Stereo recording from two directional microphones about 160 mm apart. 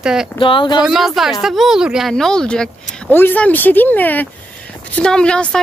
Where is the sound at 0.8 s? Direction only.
Centre (ahead or behind).